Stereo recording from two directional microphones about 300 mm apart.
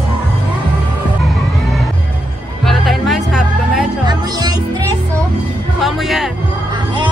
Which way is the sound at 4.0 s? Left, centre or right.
Centre.